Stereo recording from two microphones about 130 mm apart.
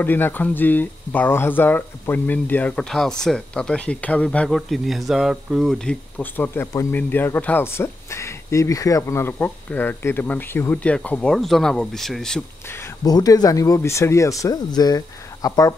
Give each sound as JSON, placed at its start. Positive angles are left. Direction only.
{"t": 0.0, "sound": "speech", "side_deg": 15}
{"t": 12.6, "sound": "a sound", "side_deg": 20}
{"t": 13.0, "sound": "speech", "side_deg": 30}